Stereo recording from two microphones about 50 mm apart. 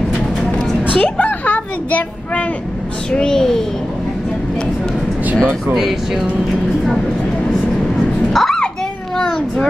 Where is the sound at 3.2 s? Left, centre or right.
Centre.